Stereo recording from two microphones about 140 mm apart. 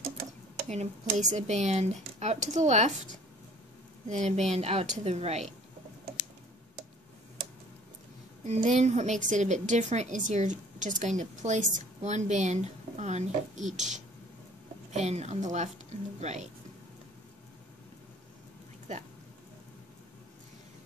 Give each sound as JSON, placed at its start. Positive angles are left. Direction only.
{"t": 0.7, "sound": "a woman's voice", "side_deg": -55}
{"t": 4.1, "sound": "a woman's voice", "side_deg": -55}
{"t": 8.5, "sound": "a woman's voice", "side_deg": -60}